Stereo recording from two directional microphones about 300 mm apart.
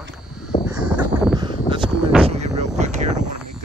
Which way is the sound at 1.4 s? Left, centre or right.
Centre.